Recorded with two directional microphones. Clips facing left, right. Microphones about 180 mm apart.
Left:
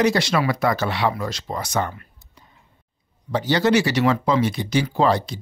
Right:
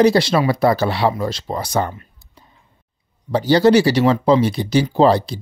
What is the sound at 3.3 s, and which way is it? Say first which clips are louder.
Speech: right 6 dB; 35° right (ahead or behind).